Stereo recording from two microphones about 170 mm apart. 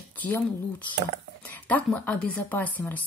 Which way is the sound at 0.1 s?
10° left (ahead or behind).